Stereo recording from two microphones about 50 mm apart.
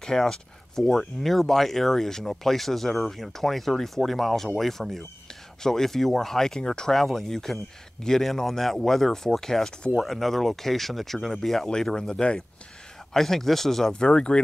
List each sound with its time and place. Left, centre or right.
0.0 s speech: centre
13.1 s speech: centre